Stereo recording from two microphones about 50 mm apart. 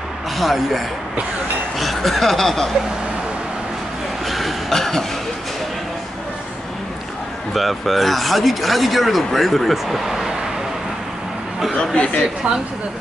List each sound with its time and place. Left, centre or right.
0.4 s speech: centre
4.3 s a sound: centre
7.5 s speech: centre
11.7 s a man's voice: centre